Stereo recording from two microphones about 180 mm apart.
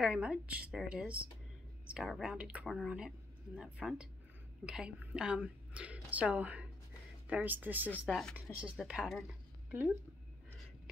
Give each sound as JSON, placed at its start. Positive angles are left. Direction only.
{"t": 0.0, "sound": "a woman's voice", "side_deg": -5}
{"t": 8.0, "sound": "a woman's voice", "side_deg": 0}